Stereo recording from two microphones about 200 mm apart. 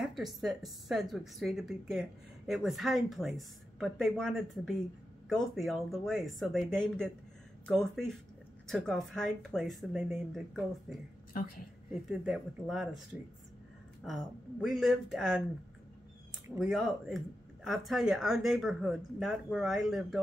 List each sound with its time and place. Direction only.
0.0 s a woman's voice: centre (ahead or behind)
11.3 s a woman's voice: 45° left (ahead or behind)
12.1 s a woman's voice: 5° right (ahead or behind)
14.0 s a woman's voice: centre (ahead or behind)
16.5 s a woman's voice: centre (ahead or behind)